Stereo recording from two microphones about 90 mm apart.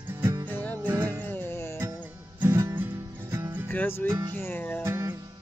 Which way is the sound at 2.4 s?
25° right (ahead or behind).